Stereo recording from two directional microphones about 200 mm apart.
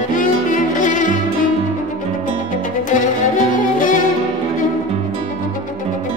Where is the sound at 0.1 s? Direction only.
40° left (ahead or behind).